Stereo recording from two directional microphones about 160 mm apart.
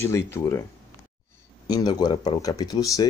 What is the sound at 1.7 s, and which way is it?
Speech, 25° left (ahead or behind).